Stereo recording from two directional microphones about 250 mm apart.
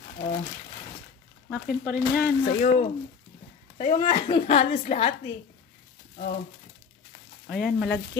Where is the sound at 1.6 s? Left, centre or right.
Left.